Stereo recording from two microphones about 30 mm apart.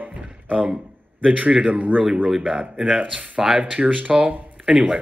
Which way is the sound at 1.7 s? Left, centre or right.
Right.